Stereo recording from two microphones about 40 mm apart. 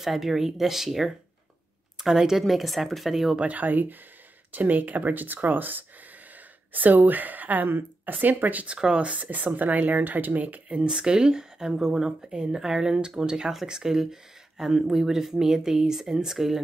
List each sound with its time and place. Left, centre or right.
0.0 s a woman's voice: centre
2.4 s speech: centre
3.3 s speech: right
8.7 s speech: centre
9.0 s speech: right
10.8 s speech: right